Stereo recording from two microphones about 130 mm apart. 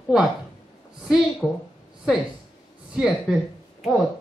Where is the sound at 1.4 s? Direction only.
5° right (ahead or behind).